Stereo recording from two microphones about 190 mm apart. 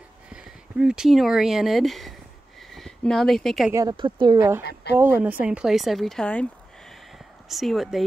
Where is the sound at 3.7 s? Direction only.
25° right (ahead or behind); by 6.4 s 5° left (ahead or behind).